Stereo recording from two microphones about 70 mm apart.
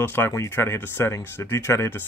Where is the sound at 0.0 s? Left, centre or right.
Left.